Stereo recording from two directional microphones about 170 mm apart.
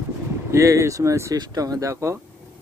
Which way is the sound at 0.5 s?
15° right (ahead or behind).